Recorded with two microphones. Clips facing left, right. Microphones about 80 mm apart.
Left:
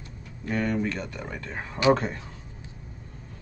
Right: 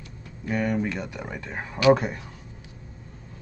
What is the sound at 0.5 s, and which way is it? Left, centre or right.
Speech, centre.